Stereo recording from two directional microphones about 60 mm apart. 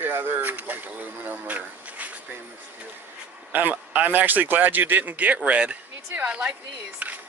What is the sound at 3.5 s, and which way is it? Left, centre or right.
Speech, right.